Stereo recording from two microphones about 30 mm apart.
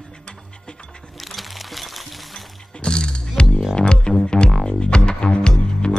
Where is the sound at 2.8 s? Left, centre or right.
Left.